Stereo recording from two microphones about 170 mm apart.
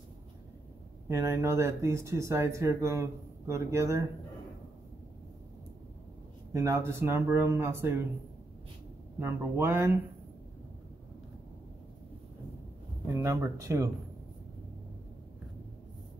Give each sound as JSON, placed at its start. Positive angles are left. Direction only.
{"t": 1.0, "sound": "speech", "side_deg": -15}
{"t": 6.5, "sound": "speech", "side_deg": -15}
{"t": 9.2, "sound": "speech", "side_deg": -15}
{"t": 13.1, "sound": "speech", "side_deg": -15}